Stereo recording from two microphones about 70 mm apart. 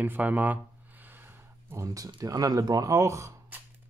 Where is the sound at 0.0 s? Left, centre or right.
Right.